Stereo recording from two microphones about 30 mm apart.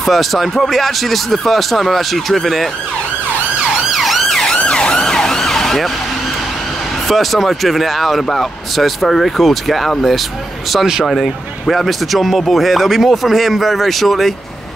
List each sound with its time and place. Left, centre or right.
0.0 s a man's voice: centre
3.9 s emergency vehicle: centre
4.6 s emergency vehicle: left
4.9 s emergency vehicle: centre
5.4 s ambulance: centre
7.1 s a man's voice: centre